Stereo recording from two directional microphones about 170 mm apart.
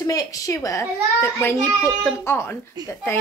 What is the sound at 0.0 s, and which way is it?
A child's voice, 20° left (ahead or behind).